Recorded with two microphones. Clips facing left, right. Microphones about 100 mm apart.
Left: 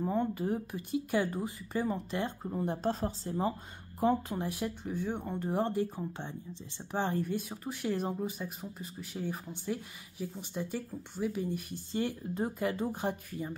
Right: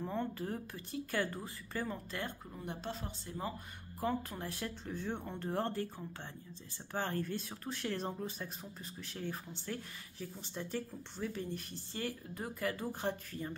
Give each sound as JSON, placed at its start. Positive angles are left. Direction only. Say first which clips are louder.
{"t": 0.0, "sound": "speech", "louder": "left 7 dB", "side_deg": 15}
{"t": 2.5, "sound": "speech", "louder": "left 10 dB", "side_deg": 35}
{"t": 4.0, "sound": "speech", "louder": "left 8 dB", "side_deg": 20}